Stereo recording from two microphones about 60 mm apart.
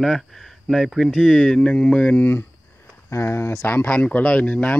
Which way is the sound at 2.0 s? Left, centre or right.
Left.